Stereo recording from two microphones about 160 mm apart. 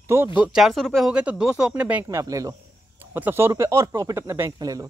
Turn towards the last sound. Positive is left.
turn(degrees=-25)  # may be behind; listen again after turning